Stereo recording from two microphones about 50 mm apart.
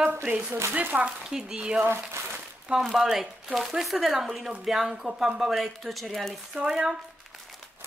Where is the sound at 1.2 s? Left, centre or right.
Centre.